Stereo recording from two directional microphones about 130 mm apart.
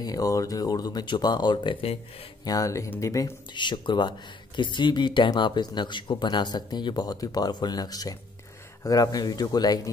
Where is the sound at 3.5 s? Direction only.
35° left (ahead or behind).